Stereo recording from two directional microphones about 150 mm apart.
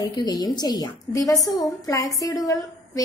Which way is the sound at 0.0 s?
25° left (ahead or behind).